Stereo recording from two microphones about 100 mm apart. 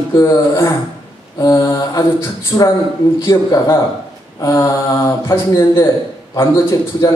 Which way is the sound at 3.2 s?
25° left (ahead or behind).